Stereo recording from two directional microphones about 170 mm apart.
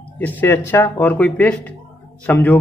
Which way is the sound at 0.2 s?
10° left (ahead or behind).